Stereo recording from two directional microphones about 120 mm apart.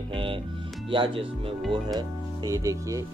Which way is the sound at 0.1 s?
45° right (ahead or behind).